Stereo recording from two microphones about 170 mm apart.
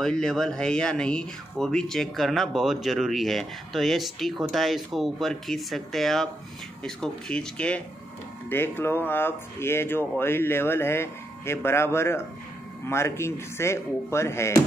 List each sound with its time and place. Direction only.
0.0 s speech: 5° left (ahead or behind)